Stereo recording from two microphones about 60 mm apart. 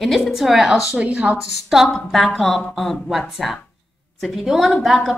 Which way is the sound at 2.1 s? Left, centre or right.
Centre.